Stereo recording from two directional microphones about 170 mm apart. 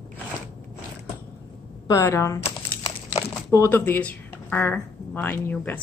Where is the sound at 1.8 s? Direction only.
20° left (ahead or behind).